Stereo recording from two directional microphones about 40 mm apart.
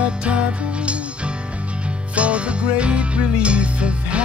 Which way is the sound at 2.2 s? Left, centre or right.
Right.